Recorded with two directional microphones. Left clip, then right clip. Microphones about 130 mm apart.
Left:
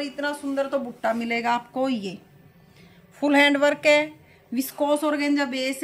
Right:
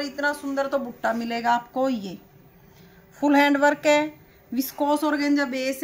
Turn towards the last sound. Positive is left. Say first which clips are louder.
# even
turn(degrees=15)  # may be behind; listen again after turning